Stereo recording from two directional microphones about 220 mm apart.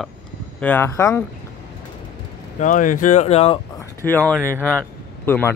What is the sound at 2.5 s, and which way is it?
Speech, 35° left (ahead or behind).